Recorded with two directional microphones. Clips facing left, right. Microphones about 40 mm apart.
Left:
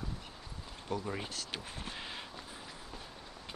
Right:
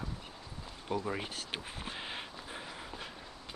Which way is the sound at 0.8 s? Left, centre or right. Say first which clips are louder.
Right 2 dB; centre.